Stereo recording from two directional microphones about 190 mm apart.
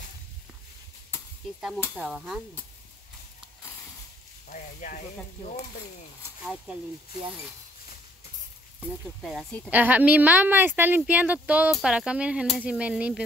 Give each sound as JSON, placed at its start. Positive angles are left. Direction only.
{"t": 2.0, "sound": "speech", "side_deg": 0}
{"t": 4.5, "sound": "speech", "side_deg": 45}
{"t": 6.4, "sound": "speech", "side_deg": 0}
{"t": 9.0, "sound": "speech", "side_deg": 0}
{"t": 9.7, "sound": "speech", "side_deg": -10}